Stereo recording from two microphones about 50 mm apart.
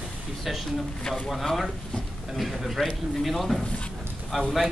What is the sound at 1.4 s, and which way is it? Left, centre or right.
A man's voice, centre.